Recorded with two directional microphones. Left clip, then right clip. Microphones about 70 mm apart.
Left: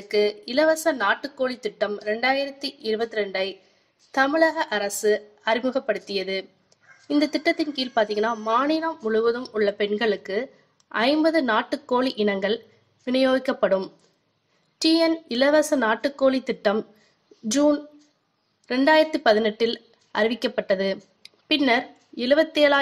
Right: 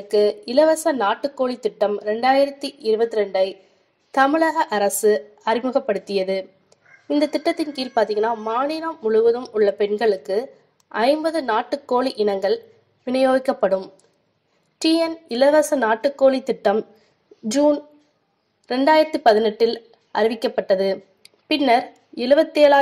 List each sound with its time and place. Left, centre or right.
0.1 s a woman's voice: right
2.0 s a woman's voice: left
2.8 s a woman's voice: right
14.8 s speech: centre
18.9 s a woman's voice: centre